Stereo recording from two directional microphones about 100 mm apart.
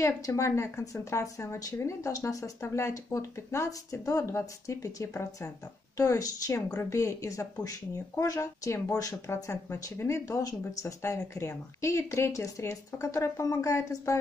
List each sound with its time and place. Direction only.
0.0 s a woman's voice: 30° left (ahead or behind)